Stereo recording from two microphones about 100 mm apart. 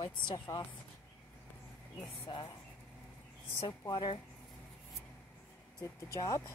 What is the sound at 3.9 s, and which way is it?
Speech, 60° left (ahead or behind).